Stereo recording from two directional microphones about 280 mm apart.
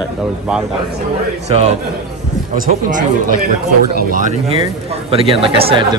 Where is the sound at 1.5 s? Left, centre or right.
Right.